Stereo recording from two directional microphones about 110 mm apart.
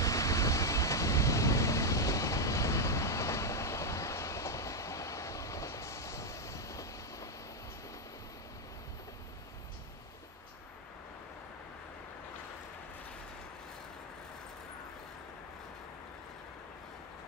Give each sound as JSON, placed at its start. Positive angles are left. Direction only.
{"t": 0.0, "sound": "vehicle", "side_deg": 30}